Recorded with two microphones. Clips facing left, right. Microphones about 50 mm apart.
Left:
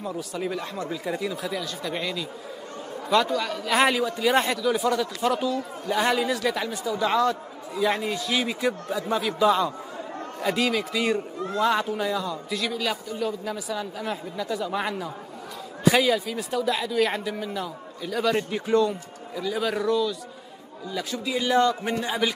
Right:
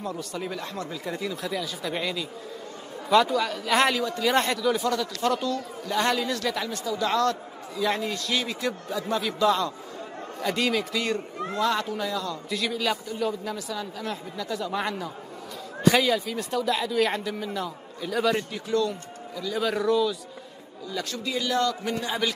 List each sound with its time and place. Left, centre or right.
0.0 s a man's voice: centre
10.4 s a man's voice: centre
12.4 s a man's voice: centre
18.5 s a man's voice: left
19.6 s a man's voice: centre
20.9 s a man's voice: centre
21.4 s a man's voice: left